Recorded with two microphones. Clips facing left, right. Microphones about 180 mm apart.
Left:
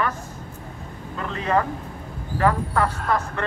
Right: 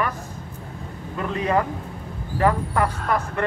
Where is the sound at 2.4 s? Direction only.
15° right (ahead or behind).